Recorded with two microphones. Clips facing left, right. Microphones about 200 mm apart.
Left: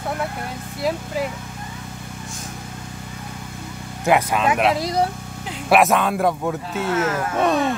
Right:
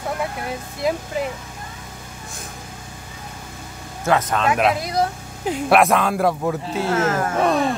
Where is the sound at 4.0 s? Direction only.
15° left (ahead or behind).